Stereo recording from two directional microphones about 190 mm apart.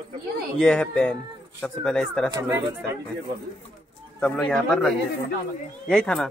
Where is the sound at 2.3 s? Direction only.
15° right (ahead or behind).